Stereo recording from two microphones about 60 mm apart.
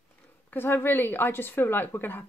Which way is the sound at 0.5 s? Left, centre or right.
Left.